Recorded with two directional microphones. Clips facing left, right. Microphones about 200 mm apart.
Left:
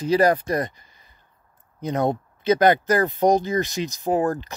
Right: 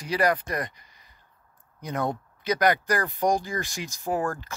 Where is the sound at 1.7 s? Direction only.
25° left (ahead or behind).